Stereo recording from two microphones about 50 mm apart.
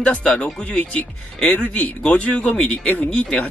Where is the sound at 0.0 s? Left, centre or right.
Left.